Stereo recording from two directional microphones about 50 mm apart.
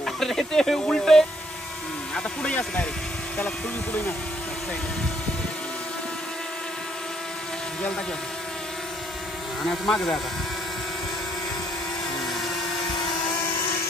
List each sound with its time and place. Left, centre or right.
0.0 s music: centre
2.4 s a sound: left
3.3 s speech: left
9.6 s speech: centre